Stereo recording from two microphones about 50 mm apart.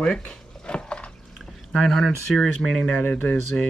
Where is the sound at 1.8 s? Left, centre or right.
Centre.